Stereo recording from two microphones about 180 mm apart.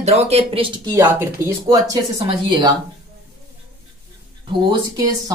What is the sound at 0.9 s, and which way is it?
Speech, 15° right (ahead or behind).